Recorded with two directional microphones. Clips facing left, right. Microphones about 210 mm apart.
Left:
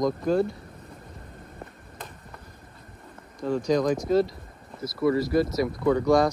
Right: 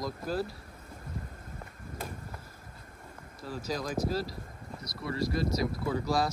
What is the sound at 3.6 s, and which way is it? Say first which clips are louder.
Speech: left 8 dB; 5° right (ahead or behind).